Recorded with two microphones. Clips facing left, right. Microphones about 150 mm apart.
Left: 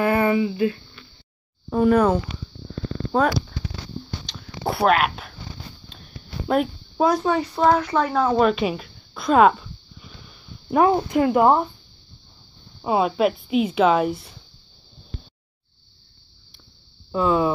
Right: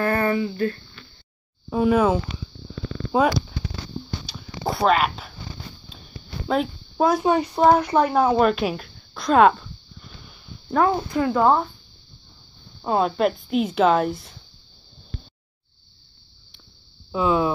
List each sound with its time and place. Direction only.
0.0 s speech: 15° left (ahead or behind)
1.7 s speech: 5° right (ahead or behind)
4.3 s a sound: centre (ahead or behind)
7.2 s speech: 15° right (ahead or behind)
8.4 s a sound: centre (ahead or behind)
10.7 s speech: 20° left (ahead or behind)
12.8 s speech: 5° left (ahead or behind)
17.1 s speech: centre (ahead or behind)